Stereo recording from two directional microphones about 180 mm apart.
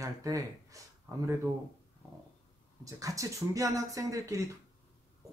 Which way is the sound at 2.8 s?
20° right (ahead or behind).